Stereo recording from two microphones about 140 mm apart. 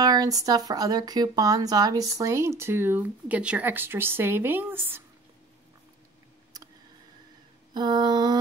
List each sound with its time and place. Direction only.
0.0 s speech: 25° right (ahead or behind)
6.5 s a sound: 25° right (ahead or behind)
7.7 s speech: 30° right (ahead or behind)